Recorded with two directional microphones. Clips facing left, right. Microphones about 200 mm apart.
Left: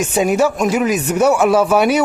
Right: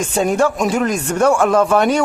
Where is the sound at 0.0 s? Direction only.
10° left (ahead or behind).